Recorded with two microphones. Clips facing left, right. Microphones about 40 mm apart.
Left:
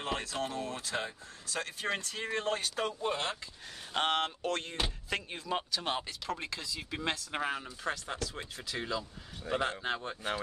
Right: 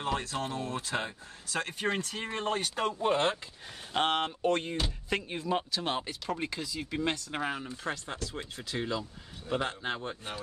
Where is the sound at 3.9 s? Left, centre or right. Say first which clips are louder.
Right 2 dB; centre.